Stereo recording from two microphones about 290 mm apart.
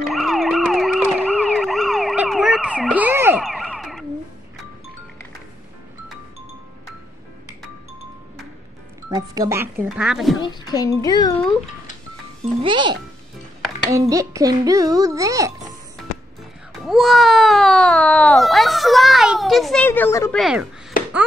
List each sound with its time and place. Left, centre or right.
0.1 s emergency vehicle: centre
9.1 s a child's voice: centre
10.4 s a child's voice: centre
12.6 s a child's voice: centre
16.8 s a child's voice: centre